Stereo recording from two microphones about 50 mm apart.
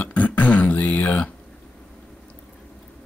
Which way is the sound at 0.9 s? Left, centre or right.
Left.